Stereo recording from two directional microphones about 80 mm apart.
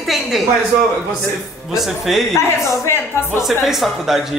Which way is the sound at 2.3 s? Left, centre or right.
Left.